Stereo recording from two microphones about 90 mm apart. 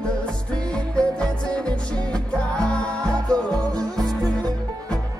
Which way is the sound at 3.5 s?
45° right (ahead or behind).